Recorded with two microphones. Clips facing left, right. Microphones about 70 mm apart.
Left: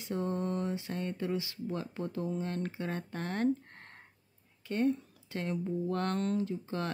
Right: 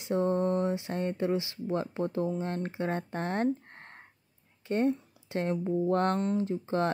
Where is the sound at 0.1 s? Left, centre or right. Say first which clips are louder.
Right 7 dB; right.